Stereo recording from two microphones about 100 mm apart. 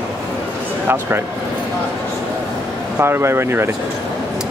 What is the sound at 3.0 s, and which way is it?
Speech, 25° right (ahead or behind).